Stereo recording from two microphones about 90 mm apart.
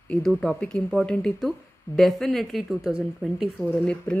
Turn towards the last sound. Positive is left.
turn(degrees=15)  # may be behind; listen again after turning